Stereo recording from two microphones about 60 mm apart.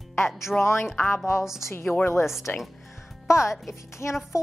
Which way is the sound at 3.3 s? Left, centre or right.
Left.